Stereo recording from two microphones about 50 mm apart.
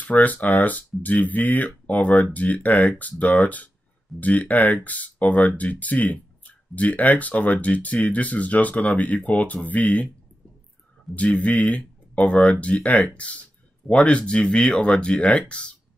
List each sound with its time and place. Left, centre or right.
0.0 s speech: left
11.1 s speech: left